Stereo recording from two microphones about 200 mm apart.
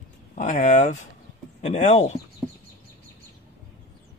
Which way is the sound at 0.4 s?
35° left (ahead or behind).